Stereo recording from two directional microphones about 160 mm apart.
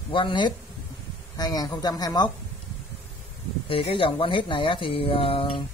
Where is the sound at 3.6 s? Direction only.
35° left (ahead or behind).